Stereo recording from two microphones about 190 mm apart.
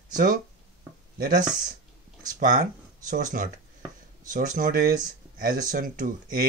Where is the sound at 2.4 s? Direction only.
45° right (ahead or behind).